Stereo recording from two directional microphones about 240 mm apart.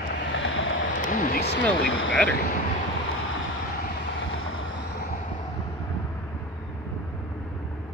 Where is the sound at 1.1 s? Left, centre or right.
Left.